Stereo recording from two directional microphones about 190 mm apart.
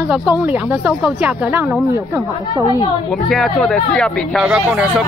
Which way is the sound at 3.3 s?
Centre (ahead or behind).